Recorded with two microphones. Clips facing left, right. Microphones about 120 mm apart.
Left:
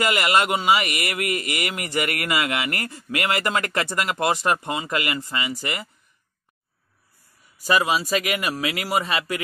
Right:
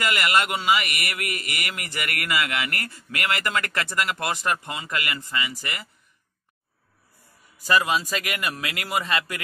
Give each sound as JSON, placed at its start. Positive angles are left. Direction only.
{"t": 0.1, "sound": "speech", "side_deg": 20}
{"t": 0.7, "sound": "a man's voice", "side_deg": 30}
{"t": 7.6, "sound": "speech", "side_deg": 10}